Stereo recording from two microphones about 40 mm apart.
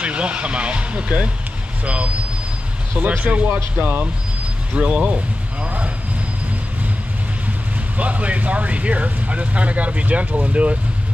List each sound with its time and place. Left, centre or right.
0.0 s speech: right
3.3 s speech: right
4.7 s speech: right
8.0 s speech: right